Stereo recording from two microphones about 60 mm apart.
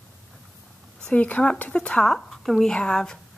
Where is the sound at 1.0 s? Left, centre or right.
Left.